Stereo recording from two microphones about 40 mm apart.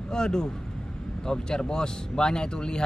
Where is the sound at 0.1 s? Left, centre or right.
Centre.